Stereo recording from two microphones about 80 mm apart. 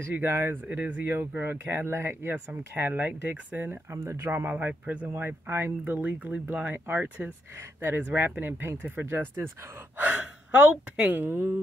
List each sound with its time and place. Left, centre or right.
0.1 s speech: right
0.7 s speech: centre
9.9 s speech: centre